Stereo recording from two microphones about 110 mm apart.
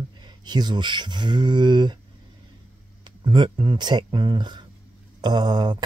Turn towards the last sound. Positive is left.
turn(degrees=-40)  # may be behind; listen again after turning